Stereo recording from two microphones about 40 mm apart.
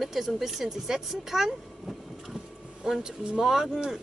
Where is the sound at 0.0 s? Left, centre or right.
Centre.